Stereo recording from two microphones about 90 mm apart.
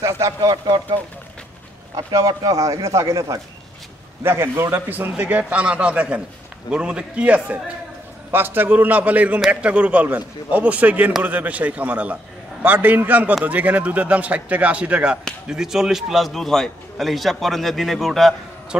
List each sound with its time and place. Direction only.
0.0 s speech: 40° right (ahead or behind)
2.0 s a man's voice: 45° right (ahead or behind); by 18.3 s 5° left (ahead or behind)